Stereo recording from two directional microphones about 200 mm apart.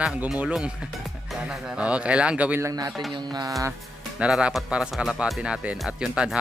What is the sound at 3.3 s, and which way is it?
Music, 15° right (ahead or behind).